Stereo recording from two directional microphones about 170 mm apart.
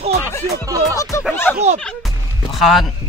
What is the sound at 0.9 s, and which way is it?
Speech, 20° left (ahead or behind).